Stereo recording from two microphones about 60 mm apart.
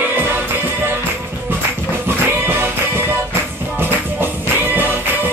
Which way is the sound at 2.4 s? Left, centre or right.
Right.